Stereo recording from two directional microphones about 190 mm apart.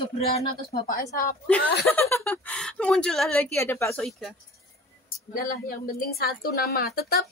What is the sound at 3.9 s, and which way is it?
Speech, centre (ahead or behind).